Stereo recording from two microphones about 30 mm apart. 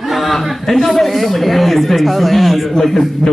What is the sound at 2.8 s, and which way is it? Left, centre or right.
Speech, centre.